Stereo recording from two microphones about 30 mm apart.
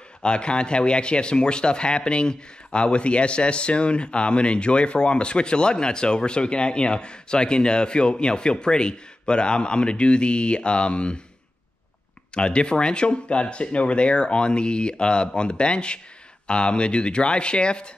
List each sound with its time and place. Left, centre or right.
0.2 s speech: left
12.4 s speech: left